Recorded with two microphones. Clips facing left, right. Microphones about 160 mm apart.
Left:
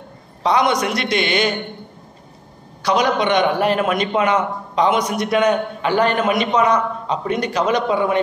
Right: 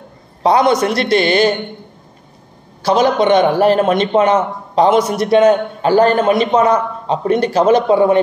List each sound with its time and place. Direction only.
0.4 s a man's voice: 30° right (ahead or behind)
2.8 s a man's voice: 30° right (ahead or behind)